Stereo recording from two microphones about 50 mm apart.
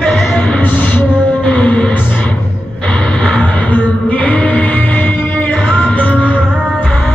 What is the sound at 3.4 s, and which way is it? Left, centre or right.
Music, left.